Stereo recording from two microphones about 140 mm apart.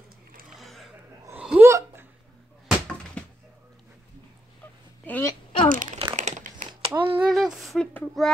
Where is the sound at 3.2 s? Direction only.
10° left (ahead or behind).